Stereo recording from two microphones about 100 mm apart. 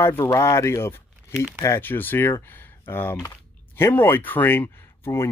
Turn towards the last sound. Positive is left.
turn(degrees=25)  # may be behind; listen again after turning